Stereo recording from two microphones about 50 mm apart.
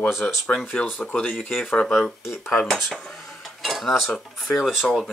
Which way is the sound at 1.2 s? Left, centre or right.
Left.